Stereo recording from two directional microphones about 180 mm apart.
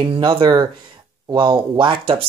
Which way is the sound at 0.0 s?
25° right (ahead or behind).